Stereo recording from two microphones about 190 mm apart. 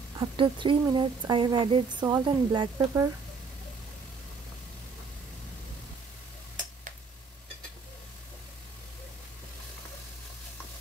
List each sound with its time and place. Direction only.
0.2 s speech: 25° right (ahead or behind)